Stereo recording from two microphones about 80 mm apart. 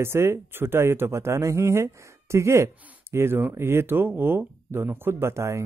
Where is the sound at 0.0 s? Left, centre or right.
Right.